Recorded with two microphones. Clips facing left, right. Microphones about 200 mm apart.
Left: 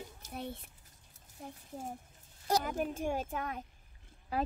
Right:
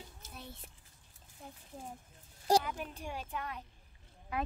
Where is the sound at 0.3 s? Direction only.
60° left (ahead or behind).